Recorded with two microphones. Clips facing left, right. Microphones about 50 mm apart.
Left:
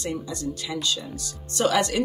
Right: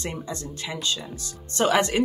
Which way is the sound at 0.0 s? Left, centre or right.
Right.